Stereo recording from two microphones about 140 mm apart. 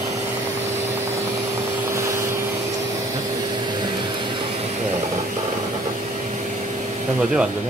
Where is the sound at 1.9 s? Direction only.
20° right (ahead or behind).